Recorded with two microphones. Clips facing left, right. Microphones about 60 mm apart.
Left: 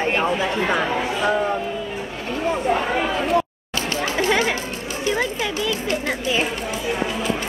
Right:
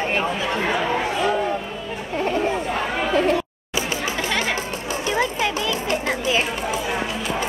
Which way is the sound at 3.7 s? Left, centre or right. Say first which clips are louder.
Left 1 dB; centre.